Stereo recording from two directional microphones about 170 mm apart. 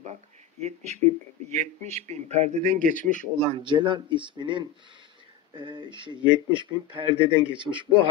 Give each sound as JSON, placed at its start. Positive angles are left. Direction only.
{"t": 0.6, "sound": "speech", "side_deg": -40}
{"t": 3.4, "sound": "speech", "side_deg": -30}